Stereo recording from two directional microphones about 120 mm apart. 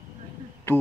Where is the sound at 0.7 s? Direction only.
20° left (ahead or behind).